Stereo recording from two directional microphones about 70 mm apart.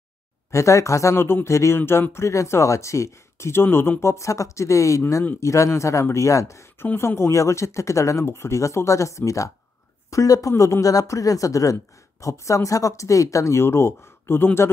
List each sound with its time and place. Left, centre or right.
0.5 s speech: left
3.6 s speech: left